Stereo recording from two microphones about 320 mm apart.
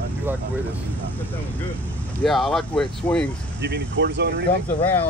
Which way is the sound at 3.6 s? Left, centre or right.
Right.